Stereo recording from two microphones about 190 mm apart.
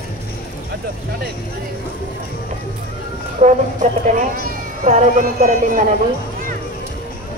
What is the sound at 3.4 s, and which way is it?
Speech, 40° right (ahead or behind).